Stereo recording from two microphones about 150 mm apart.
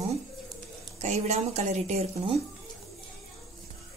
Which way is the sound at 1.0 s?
50° right (ahead or behind).